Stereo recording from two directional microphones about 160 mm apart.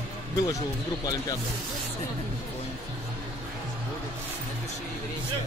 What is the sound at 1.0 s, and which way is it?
Speech, 25° left (ahead or behind).